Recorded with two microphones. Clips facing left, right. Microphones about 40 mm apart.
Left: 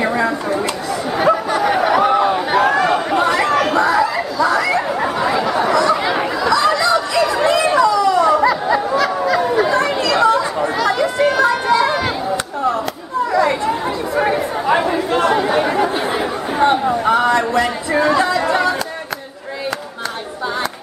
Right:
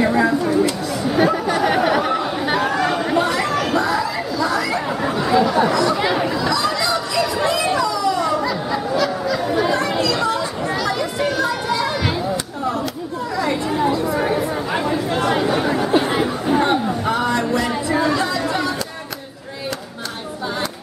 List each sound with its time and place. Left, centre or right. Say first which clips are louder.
0.0 s chatter: right 1 dB; centre
2.0 s a sound: left 6 dB; centre
2.7 s chatter: left 3 dB; centre
8.4 s chatter: left 6 dB; left
10.6 s children playing: left 5 dB; left
11.7 s a sound: left 6 dB; left
13.3 s chatter: left 5 dB; centre
15.9 s chatter: right 2 dB; centre
16.8 s a sound: left 5 dB; centre